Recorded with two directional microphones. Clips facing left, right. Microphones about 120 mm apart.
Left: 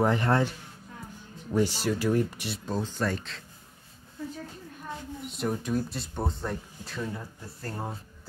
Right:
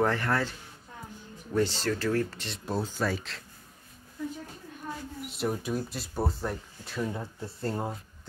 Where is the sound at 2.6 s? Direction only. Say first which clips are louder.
Even; 5° right (ahead or behind).